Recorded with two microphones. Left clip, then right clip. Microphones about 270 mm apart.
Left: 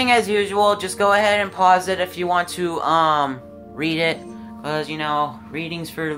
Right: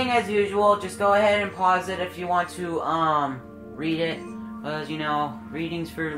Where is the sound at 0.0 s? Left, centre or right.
Left.